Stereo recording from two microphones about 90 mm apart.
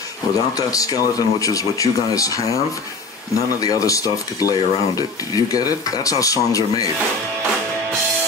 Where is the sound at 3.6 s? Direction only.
40° left (ahead or behind).